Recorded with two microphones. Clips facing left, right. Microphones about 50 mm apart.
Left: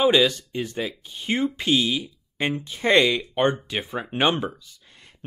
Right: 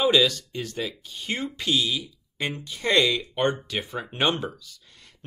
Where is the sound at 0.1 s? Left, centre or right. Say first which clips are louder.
Left 2 dB; centre.